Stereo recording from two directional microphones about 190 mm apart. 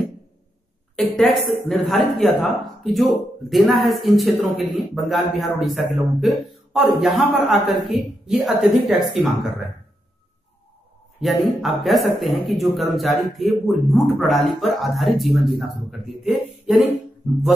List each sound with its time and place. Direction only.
0.9 s speech: centre (ahead or behind)
11.1 s speech: centre (ahead or behind)